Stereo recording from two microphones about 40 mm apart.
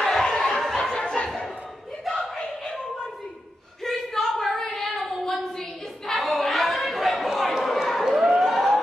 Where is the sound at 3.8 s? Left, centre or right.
Centre.